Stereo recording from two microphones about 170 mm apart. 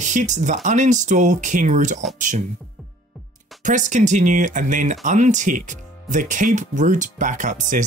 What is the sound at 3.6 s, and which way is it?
Speech, 50° right (ahead or behind).